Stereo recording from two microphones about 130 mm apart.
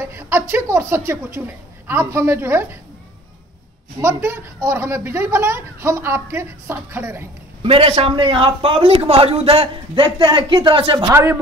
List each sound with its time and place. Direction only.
0.1 s speech: 15° right (ahead or behind)
4.0 s speech: 20° right (ahead or behind)
7.6 s a man's voice: 45° right (ahead or behind)
11.1 s speech: 20° right (ahead or behind)